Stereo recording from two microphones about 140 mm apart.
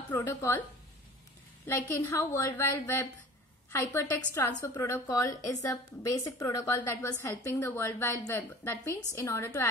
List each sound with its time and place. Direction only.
0.1 s a woman's voice: 15° left (ahead or behind)
2.0 s a woman's voice: 15° left (ahead or behind)